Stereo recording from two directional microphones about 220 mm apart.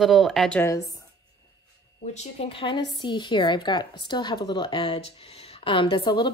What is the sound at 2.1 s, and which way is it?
A woman's voice, 30° left (ahead or behind).